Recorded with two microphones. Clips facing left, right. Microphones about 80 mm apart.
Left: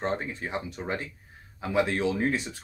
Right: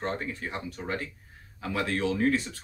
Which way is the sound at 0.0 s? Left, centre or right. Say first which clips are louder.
Left 2 dB; left.